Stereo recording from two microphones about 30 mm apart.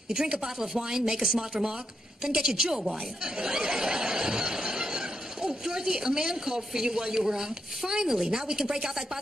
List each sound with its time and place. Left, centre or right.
0.4 s speech: right
3.3 s a sound: right
5.5 s speech: right